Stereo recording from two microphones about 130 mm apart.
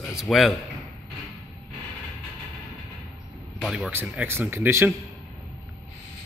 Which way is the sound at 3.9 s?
15° right (ahead or behind).